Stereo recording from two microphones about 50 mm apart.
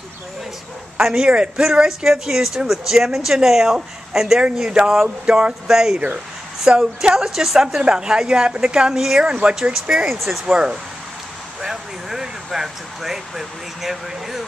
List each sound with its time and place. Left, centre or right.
1.0 s speech: centre
1.3 s speech: right
4.6 s speech: centre
9.2 s speech: right
10.0 s speech: centre
10.4 s speech: centre